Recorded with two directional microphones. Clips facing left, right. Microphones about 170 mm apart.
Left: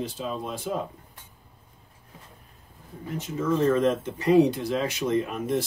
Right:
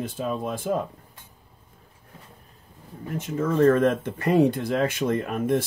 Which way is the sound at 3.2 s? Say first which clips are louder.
Right 4 dB; 55° right (ahead or behind).